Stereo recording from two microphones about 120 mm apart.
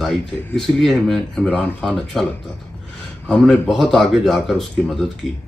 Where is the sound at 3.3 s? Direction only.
5° left (ahead or behind).